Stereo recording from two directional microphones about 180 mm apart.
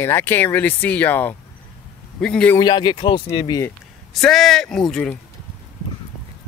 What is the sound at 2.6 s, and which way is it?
Speech, 25° left (ahead or behind).